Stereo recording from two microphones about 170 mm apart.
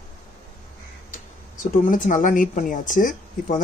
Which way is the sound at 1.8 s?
50° left (ahead or behind).